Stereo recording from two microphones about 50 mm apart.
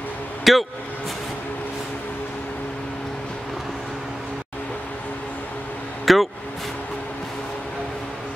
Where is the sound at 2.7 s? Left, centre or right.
Centre.